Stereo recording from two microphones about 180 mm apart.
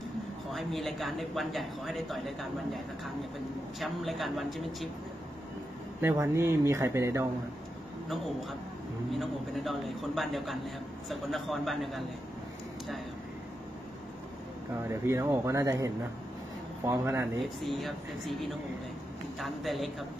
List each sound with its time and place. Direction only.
0.5 s speech: centre (ahead or behind)
3.8 s speech: centre (ahead or behind)
5.9 s speech: 15° right (ahead or behind)
9.1 s speech: centre (ahead or behind)
14.9 s speech: 15° right (ahead or behind)
17.4 s speech: centre (ahead or behind)